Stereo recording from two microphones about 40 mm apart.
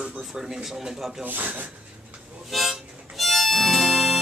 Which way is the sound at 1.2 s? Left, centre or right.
Right.